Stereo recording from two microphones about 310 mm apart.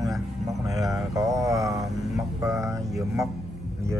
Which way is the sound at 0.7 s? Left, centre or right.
Centre.